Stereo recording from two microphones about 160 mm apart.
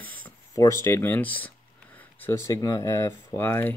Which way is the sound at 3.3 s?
15° left (ahead or behind).